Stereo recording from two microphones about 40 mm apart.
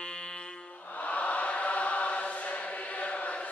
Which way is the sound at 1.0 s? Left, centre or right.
Left.